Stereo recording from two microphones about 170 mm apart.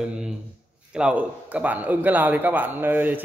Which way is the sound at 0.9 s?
5° right (ahead or behind).